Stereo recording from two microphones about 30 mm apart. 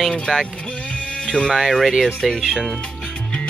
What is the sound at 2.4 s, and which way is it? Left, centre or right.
Speech, right.